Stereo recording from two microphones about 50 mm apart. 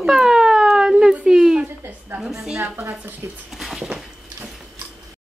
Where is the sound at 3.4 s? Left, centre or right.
Centre.